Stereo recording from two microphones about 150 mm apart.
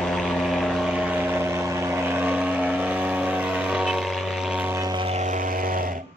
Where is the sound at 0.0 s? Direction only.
Centre (ahead or behind).